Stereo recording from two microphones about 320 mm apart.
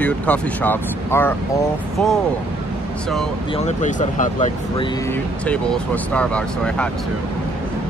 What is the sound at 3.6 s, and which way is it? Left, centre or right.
Speech, left.